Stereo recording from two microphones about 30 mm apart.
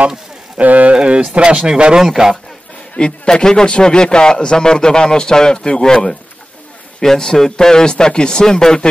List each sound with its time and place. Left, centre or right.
0.6 s speech: right
1.0 s speech: right
1.7 s a man's voice: right
2.0 s a man's voice: centre
3.0 s a man's voice: left